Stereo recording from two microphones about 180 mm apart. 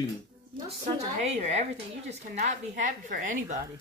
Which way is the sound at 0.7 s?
35° right (ahead or behind).